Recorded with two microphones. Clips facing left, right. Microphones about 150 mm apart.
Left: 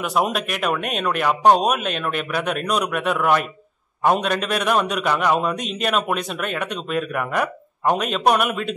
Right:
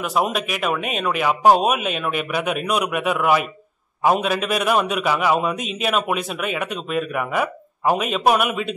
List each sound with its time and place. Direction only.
0.0 s a man's voice: centre (ahead or behind)